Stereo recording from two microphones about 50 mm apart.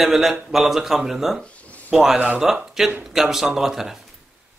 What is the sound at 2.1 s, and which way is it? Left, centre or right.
Speech, right.